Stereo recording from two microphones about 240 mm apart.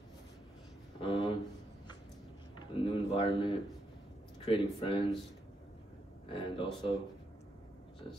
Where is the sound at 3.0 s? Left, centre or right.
Left.